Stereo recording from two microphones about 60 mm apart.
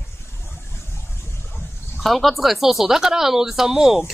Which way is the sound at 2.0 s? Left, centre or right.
Centre.